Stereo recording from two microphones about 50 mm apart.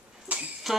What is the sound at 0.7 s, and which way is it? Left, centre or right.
Jingle bell, centre.